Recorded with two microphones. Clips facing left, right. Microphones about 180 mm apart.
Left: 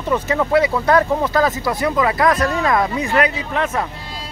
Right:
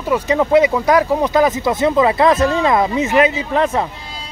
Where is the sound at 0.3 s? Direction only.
20° right (ahead or behind).